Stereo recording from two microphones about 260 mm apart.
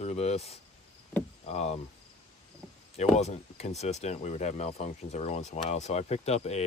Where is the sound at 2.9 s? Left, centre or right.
Left.